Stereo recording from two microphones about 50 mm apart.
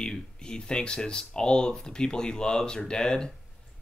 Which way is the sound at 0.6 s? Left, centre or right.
Centre.